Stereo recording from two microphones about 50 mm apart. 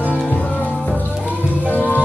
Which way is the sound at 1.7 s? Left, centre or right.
Left.